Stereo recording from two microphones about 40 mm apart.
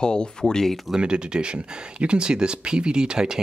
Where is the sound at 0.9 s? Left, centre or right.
Right.